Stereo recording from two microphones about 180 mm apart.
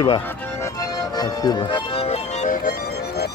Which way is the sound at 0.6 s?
20° left (ahead or behind).